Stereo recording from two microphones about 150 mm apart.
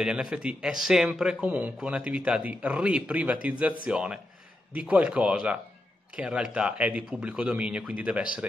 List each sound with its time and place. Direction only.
0.0 s a man's voice: 5° right (ahead or behind)